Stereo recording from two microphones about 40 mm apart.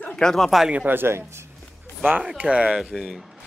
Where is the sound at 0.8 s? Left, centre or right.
Right.